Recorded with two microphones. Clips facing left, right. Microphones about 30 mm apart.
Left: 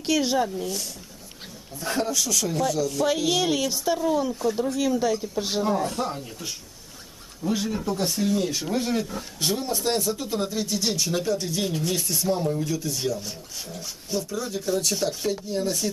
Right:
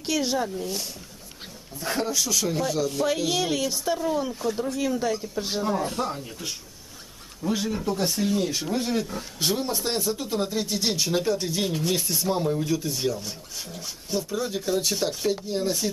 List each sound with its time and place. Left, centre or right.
0.0 s speech: centre
1.8 s speech: centre
3.1 s speech: centre